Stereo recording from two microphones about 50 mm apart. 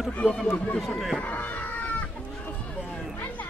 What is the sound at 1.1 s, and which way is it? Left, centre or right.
Chicken, left.